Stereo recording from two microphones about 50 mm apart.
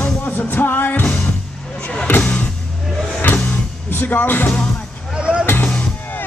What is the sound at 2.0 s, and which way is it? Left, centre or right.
Music, left.